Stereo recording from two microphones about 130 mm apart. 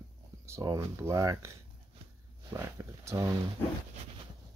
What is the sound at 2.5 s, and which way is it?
Speech, 20° right (ahead or behind).